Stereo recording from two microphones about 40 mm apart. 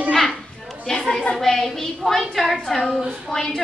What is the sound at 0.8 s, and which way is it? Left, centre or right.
Chatter, centre.